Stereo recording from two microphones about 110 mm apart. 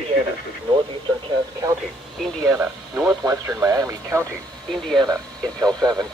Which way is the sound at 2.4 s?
15° right (ahead or behind).